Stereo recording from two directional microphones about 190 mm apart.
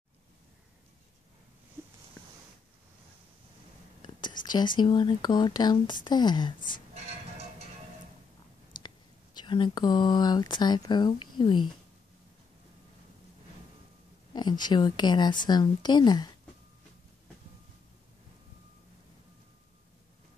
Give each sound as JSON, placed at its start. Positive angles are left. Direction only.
{"t": 1.8, "sound": "a sound", "side_deg": -15}
{"t": 4.2, "sound": "a woman's voice", "side_deg": 20}
{"t": 8.8, "sound": "speech", "side_deg": 25}
{"t": 14.3, "sound": "a woman's voice", "side_deg": 20}